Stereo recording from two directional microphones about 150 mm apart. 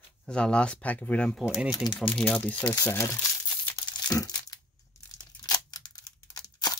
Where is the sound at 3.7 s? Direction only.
25° left (ahead or behind).